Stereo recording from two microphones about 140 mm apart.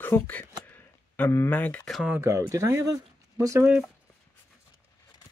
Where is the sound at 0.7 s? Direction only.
15° left (ahead or behind).